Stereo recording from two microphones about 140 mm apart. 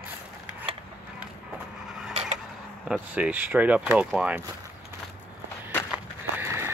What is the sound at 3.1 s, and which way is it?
Speech, 10° right (ahead or behind).